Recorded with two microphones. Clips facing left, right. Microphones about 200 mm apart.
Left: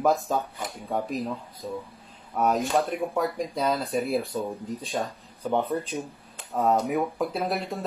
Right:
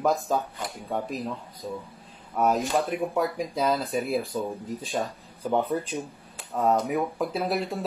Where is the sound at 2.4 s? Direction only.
Centre (ahead or behind).